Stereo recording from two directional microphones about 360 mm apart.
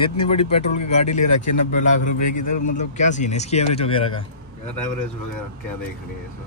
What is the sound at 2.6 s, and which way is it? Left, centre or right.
Speech, left.